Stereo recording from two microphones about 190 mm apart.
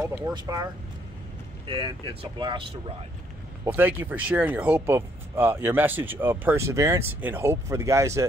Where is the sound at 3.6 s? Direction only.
10° right (ahead or behind).